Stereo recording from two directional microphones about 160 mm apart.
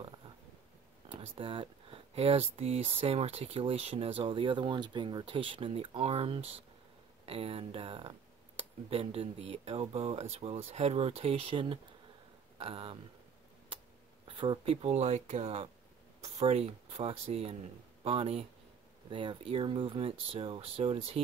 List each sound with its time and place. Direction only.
1.0 s speech: 35° right (ahead or behind)
14.2 s speech: 30° right (ahead or behind)